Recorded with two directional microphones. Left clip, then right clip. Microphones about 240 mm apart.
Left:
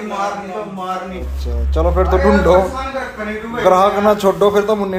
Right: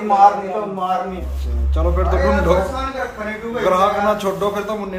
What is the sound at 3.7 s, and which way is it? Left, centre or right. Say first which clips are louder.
A man's voice: left 4 dB; left.